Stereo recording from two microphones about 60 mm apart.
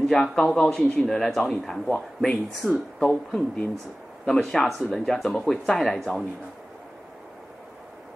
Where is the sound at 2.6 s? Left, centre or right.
Right.